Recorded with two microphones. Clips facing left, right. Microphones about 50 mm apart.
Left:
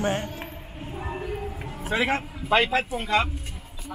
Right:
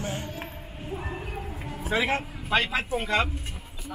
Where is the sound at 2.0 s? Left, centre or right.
Left.